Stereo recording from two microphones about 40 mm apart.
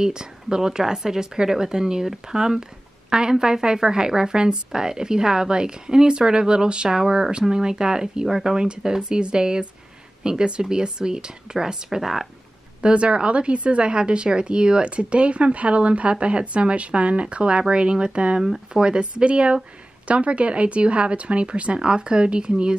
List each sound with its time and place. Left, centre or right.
0.0 s speech: centre
12.8 s speech: right